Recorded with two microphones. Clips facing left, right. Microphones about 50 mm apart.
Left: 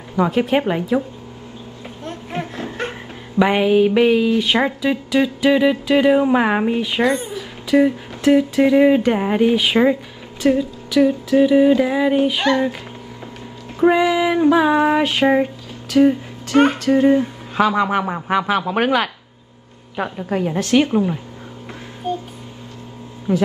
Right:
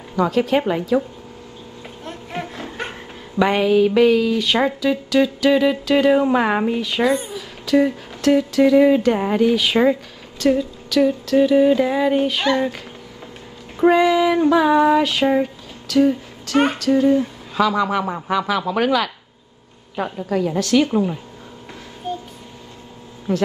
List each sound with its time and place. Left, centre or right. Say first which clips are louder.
0.1 s speech: left 1 dB; left
2.9 s speech: left 2 dB; centre
7.0 s speech: right 2 dB; centre
7.6 s speech: left 2 dB; centre
13.8 s a sound: right 1 dB; centre
14.8 s speech: even; left
18.7 s speech: left 1 dB; left
20.9 s speech: left 1 dB; left
23.3 s speech: left 2 dB; centre